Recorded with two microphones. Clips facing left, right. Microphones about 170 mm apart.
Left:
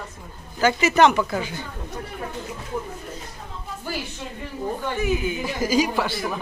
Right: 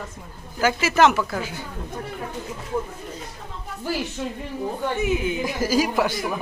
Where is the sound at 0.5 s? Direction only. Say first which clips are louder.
Left 1 dB; 5° right (ahead or behind).